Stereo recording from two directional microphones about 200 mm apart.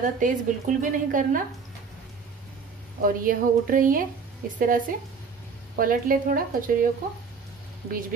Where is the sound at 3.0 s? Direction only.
45° right (ahead or behind).